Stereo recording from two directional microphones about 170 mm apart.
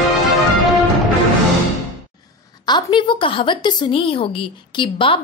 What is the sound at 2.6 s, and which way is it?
A woman's voice, 25° left (ahead or behind).